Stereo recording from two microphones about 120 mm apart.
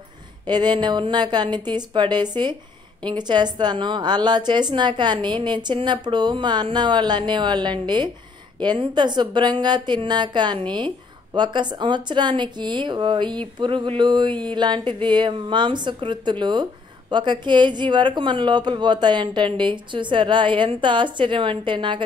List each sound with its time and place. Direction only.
0.5 s a woman's voice: 35° right (ahead or behind)